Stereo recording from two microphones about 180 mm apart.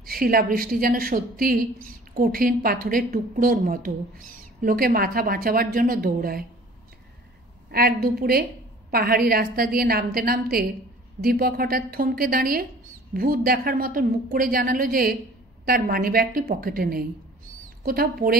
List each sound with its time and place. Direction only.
0.0 s a woman's voice: 55° right (ahead or behind)
7.7 s a woman's voice: 55° right (ahead or behind)